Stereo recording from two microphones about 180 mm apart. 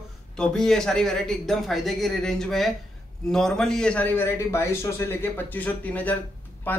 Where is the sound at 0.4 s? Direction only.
5° left (ahead or behind).